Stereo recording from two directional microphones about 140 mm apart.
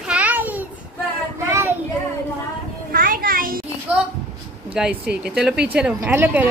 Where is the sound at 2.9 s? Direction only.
90° right.